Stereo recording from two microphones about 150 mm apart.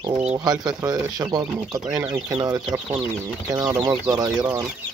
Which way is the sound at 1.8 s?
10° right (ahead or behind).